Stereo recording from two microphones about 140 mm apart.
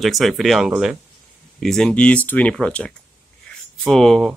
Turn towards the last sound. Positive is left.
turn(degrees=0)  # may be behind; listen again after turning